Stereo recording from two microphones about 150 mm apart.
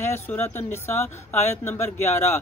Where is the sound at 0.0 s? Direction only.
15° left (ahead or behind).